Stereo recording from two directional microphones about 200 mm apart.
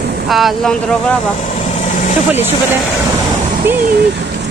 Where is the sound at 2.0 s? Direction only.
35° left (ahead or behind).